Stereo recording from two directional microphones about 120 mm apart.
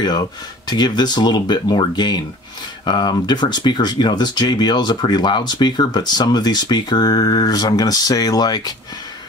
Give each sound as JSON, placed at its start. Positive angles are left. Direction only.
{"t": 0.0, "sound": "speech", "side_deg": 35}